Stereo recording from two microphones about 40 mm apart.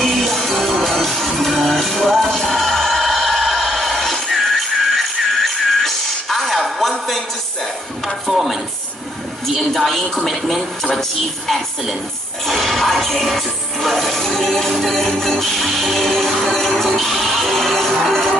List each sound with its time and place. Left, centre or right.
0.0 s music: centre
8.3 s a sound: centre
9.6 s a woman's voice: centre
12.4 s music: centre